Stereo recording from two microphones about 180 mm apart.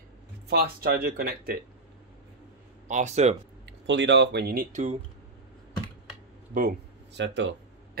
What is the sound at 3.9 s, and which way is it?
Speech, 85° right.